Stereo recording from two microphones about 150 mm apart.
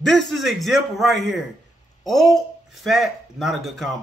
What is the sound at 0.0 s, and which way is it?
Speech, centre (ahead or behind).